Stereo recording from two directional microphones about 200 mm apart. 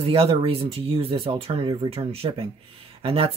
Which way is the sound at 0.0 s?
30° right (ahead or behind).